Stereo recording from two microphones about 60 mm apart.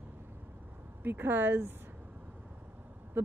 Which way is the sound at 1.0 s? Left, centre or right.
Right.